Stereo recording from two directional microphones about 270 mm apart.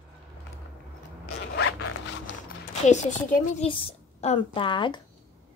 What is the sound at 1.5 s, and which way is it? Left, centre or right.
Zipper, left.